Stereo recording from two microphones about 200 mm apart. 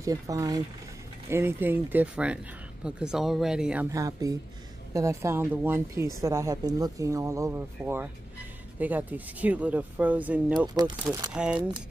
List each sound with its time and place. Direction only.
0.0 s speech: 15° right (ahead or behind)